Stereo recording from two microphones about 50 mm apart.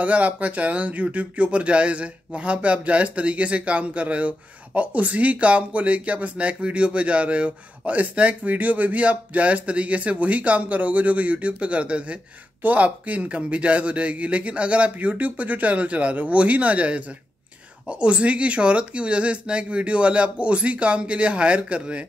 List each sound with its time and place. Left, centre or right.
0.0 s speech: right